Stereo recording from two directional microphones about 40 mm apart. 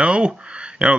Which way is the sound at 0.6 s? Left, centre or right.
Right.